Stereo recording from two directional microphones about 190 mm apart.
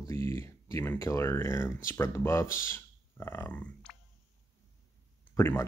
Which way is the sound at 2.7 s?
10° left (ahead or behind).